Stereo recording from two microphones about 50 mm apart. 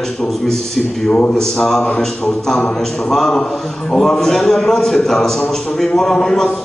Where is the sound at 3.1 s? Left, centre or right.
Centre.